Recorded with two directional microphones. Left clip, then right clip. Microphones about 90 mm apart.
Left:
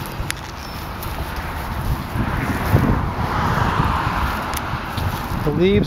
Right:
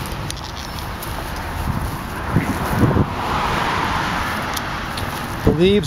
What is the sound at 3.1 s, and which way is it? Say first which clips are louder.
Vehicle: right 1 dB; 20° right (ahead or behind).